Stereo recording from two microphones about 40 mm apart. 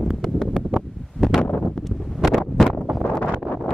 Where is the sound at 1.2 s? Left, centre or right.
Centre.